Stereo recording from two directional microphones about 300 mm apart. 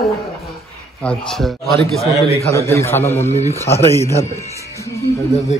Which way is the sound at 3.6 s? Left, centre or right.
Centre.